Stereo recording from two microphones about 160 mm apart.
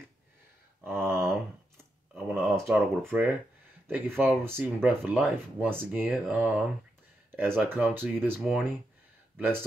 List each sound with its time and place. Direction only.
0.8 s a sound: 15° right (ahead or behind)
2.1 s speech: 5° right (ahead or behind)
8.4 s speech: centre (ahead or behind)
9.4 s speech: 15° right (ahead or behind)